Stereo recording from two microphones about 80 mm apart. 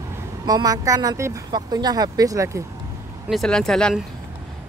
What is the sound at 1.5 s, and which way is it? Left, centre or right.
Speech, right.